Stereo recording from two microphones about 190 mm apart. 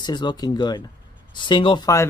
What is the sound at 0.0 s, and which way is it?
Speech, 20° left (ahead or behind).